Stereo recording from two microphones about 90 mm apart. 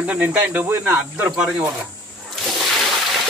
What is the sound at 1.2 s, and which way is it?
Speech, 10° right (ahead or behind).